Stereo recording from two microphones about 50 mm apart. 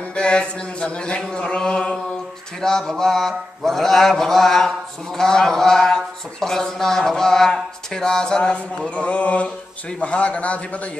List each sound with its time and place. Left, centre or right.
0.1 s mantra: centre